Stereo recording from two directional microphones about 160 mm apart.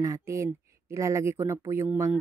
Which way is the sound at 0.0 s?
20° right (ahead or behind).